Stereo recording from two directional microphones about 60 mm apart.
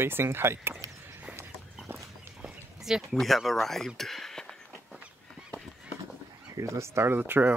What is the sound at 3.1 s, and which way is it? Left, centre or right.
Speech, centre.